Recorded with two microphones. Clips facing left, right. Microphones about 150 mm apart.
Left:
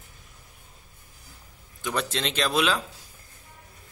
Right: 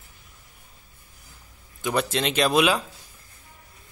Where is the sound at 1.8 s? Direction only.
10° right (ahead or behind).